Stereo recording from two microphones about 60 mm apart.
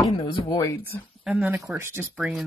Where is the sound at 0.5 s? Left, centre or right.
Left.